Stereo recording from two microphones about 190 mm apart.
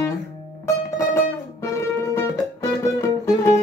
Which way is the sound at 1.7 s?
15° left (ahead or behind).